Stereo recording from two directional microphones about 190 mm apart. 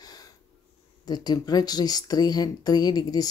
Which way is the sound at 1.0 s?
20° left (ahead or behind).